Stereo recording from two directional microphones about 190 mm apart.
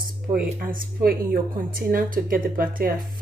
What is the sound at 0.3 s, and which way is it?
A woman's voice, 50° right (ahead or behind).